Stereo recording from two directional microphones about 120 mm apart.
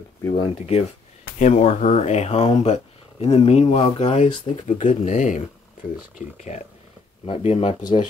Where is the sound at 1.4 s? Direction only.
70° left (ahead or behind).